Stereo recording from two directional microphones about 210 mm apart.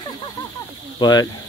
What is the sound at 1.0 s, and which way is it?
Speech, 20° left (ahead or behind).